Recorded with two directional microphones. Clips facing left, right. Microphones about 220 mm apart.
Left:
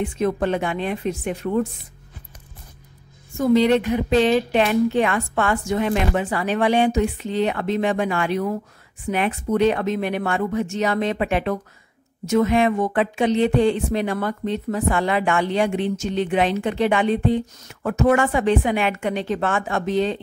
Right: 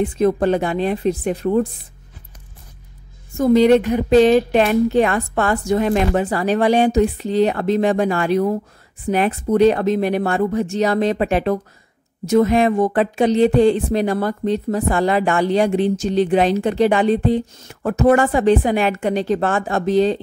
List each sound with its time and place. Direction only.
0.0 s speech: 35° right (ahead or behind)
3.3 s speech: 45° right (ahead or behind)